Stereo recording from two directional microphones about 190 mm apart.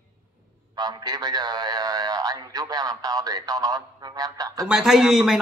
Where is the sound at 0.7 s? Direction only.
20° right (ahead or behind).